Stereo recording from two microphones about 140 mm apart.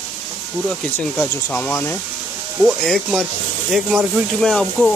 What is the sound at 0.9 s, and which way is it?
Speech, 15° left (ahead or behind).